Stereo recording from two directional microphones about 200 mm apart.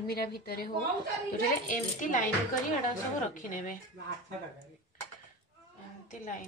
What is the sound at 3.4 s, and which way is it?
Speech, 40° left (ahead or behind).